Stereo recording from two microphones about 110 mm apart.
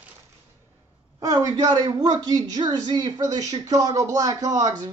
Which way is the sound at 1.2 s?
35° right (ahead or behind).